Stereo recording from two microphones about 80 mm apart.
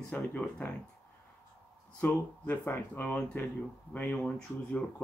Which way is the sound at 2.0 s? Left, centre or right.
Left.